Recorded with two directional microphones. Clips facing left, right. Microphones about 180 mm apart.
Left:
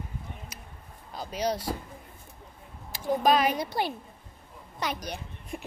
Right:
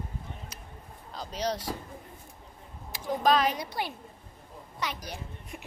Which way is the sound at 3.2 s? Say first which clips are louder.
Left 1 dB; 10° left (ahead or behind).